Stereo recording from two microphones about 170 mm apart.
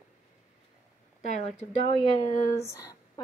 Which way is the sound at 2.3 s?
20° left (ahead or behind).